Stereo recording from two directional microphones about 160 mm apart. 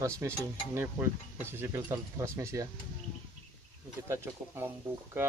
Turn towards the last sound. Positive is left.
turn(degrees=-15)  # may be behind; listen again after turning